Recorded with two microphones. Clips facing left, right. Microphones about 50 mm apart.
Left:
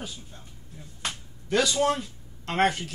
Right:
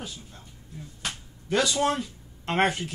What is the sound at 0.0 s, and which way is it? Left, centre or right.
Speech, centre.